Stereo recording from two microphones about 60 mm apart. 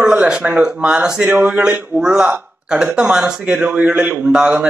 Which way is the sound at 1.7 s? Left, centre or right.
Right.